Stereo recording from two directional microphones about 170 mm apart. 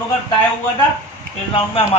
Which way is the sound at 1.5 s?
30° left (ahead or behind).